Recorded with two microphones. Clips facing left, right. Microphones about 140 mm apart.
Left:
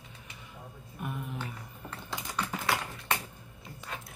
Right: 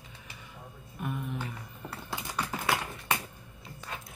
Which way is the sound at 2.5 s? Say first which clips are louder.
Right 1 dB; centre (ahead or behind).